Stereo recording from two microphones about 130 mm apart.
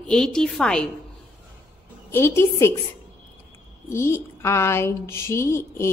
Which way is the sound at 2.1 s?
20° left (ahead or behind).